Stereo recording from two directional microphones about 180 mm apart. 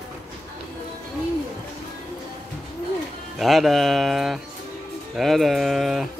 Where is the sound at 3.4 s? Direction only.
Centre (ahead or behind).